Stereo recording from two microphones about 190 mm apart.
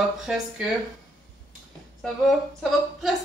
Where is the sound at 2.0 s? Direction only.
Centre (ahead or behind).